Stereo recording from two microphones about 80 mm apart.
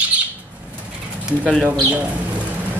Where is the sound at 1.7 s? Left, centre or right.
Centre.